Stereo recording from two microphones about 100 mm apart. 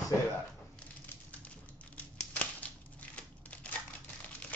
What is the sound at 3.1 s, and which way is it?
Crumpling, 15° left (ahead or behind).